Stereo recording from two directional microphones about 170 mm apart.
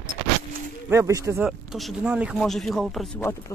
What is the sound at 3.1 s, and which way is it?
Speech, 15° left (ahead or behind).